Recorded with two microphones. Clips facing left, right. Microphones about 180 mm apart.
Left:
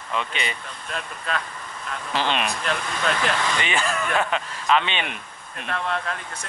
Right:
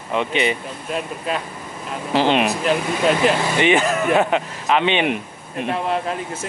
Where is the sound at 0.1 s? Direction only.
20° right (ahead or behind).